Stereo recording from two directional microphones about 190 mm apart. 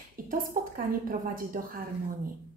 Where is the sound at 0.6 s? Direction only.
45° right (ahead or behind).